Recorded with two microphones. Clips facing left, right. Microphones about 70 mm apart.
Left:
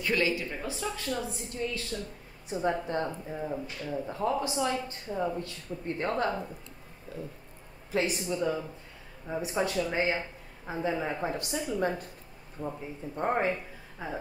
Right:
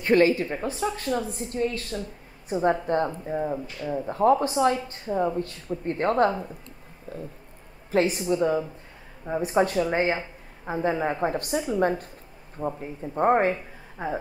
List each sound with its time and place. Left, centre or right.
0.0 s speech: right
8.4 s speech: right
12.6 s speech: right
13.2 s speech: right